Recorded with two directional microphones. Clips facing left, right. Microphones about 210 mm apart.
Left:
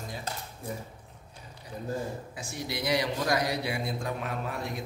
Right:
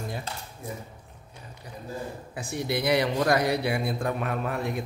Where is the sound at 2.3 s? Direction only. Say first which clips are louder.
Right 7 dB; 60° right (ahead or behind).